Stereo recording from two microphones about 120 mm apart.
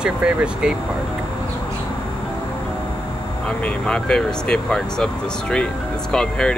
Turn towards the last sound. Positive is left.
turn(degrees=5)  # may be behind; listen again after turning